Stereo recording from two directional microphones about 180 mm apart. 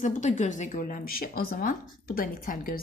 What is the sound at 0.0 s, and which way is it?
Speech, 45° left (ahead or behind).